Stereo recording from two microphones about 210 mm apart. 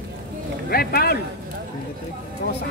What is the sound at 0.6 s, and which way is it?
Speech, 45° left (ahead or behind).